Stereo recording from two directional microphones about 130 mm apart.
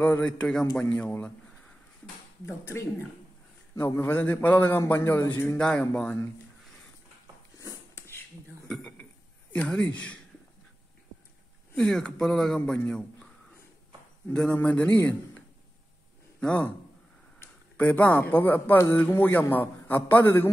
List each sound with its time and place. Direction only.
0.0 s speech: 10° left (ahead or behind)
2.4 s speech: 20° left (ahead or behind)
5.6 s speech: 5° left (ahead or behind)
7.5 s a sound: 20° left (ahead or behind)
8.6 s a sound: 5° left (ahead or behind)
9.5 s speech: 10° left (ahead or behind)
11.7 s speech: 5° left (ahead or behind)
14.3 s a man's voice: 10° left (ahead or behind)